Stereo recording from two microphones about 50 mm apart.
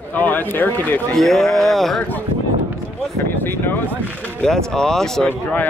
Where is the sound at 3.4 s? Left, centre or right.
Left.